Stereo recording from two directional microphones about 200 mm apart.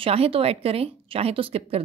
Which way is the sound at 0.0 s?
30° right (ahead or behind).